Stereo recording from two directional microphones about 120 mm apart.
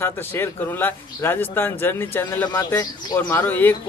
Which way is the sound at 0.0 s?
20° left (ahead or behind).